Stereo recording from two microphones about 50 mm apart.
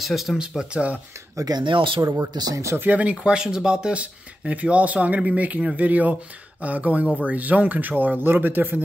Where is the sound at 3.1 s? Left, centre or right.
Centre.